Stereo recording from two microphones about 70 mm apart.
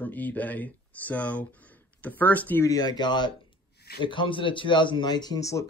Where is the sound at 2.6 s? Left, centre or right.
Left.